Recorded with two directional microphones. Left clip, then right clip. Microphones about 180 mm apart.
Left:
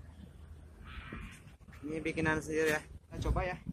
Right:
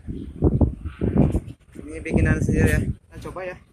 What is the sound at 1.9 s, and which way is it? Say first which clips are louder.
Speech: right 8 dB; 45° left (ahead or behind).